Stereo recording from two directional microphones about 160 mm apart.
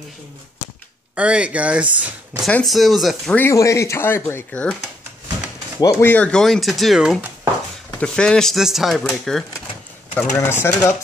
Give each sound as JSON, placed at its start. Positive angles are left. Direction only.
{"t": 1.1, "sound": "speech", "side_deg": -5}
{"t": 3.3, "sound": "speech", "side_deg": 15}
{"t": 5.8, "sound": "speech", "side_deg": 20}
{"t": 10.4, "sound": "speech", "side_deg": 15}